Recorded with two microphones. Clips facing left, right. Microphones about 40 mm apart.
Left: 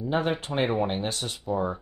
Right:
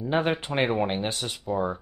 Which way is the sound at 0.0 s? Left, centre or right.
Right.